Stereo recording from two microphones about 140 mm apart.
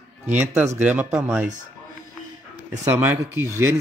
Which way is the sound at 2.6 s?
10° right (ahead or behind).